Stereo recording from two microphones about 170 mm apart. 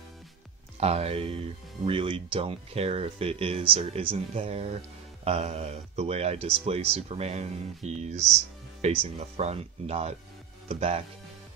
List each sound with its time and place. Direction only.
0.7 s speech: 35° right (ahead or behind)